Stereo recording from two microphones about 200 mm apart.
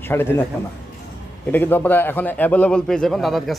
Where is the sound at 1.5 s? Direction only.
10° left (ahead or behind).